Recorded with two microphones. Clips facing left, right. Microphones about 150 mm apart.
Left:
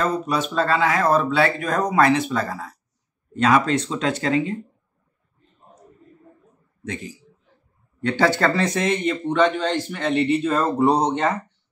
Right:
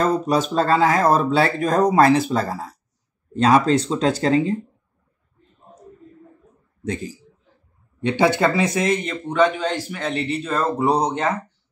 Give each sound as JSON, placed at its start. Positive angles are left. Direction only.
{"t": 0.0, "sound": "speech", "side_deg": -40}
{"t": 6.8, "sound": "a man's voice", "side_deg": -35}
{"t": 8.0, "sound": "a man's voice", "side_deg": -15}